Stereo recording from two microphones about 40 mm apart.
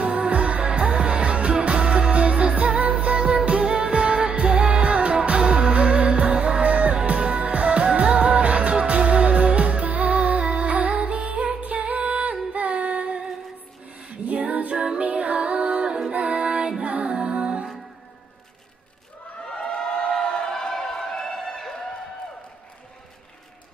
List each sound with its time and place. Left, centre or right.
0.3 s music: right
14.0 s music: right
19.5 s a sound: left